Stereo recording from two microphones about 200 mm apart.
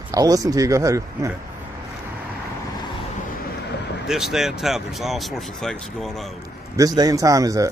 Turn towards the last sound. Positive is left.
turn(degrees=-15)  # may be behind; listen again after turning